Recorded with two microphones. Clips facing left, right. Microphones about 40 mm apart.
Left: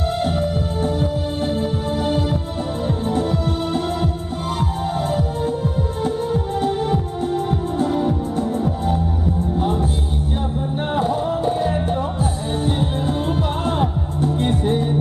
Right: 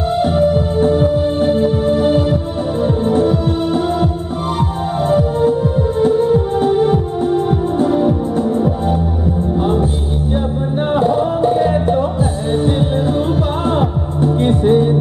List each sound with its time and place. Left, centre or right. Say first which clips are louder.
0.1 s music: right 11 dB; centre
10.9 s music: right 6 dB; centre
13.7 s music: right 5 dB; centre